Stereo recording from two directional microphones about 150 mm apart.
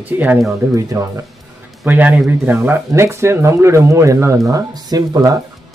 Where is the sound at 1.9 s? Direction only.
10° right (ahead or behind).